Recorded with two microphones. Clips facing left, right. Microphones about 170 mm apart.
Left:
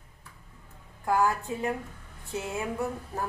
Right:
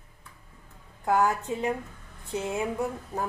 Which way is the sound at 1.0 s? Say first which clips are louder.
Right 1 dB; 20° right (ahead or behind).